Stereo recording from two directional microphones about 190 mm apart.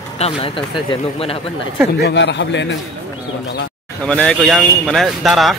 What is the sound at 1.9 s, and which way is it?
Speech, 65° left (ahead or behind).